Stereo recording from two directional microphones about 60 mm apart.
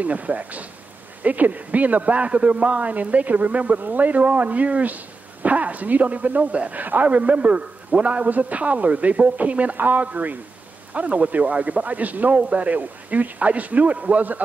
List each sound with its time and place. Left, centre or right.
0.0 s a man's voice: right